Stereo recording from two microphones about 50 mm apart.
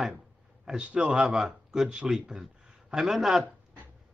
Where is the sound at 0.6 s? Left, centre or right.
Centre.